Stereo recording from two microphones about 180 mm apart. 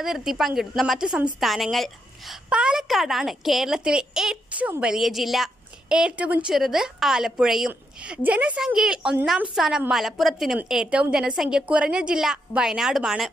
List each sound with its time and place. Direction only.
0.0 s a woman's voice: centre (ahead or behind)